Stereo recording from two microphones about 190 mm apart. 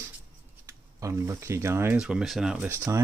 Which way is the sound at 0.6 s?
15° right (ahead or behind).